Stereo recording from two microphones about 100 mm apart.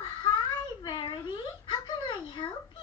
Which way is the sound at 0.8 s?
55° left (ahead or behind).